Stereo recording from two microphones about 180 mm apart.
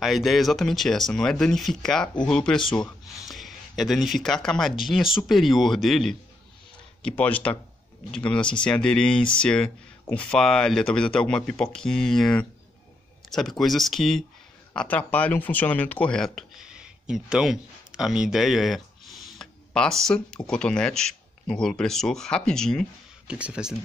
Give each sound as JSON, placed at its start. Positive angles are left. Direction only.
{"t": 0.0, "sound": "speech", "side_deg": 0}